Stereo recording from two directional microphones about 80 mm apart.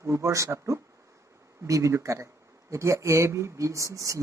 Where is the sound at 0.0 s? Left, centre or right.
Right.